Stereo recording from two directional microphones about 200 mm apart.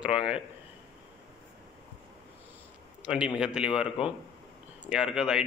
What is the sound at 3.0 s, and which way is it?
Speech, 5° right (ahead or behind).